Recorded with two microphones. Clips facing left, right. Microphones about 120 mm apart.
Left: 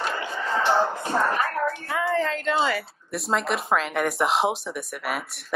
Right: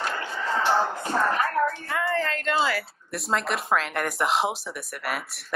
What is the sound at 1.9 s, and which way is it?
Speech, centre (ahead or behind).